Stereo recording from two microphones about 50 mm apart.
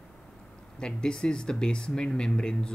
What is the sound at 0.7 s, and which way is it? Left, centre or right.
Speech, centre.